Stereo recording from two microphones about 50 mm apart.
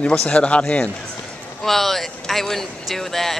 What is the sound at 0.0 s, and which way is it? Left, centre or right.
Speech, centre.